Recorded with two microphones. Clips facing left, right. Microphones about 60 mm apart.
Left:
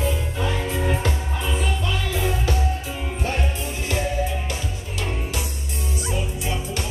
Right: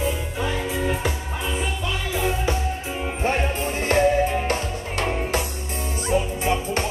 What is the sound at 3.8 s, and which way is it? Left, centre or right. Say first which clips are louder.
Music: right 7 dB; right.